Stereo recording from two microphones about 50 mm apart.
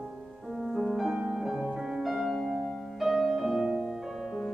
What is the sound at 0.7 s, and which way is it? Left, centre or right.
Music, centre.